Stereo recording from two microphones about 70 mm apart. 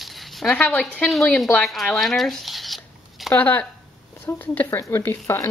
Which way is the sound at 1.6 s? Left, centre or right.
Centre.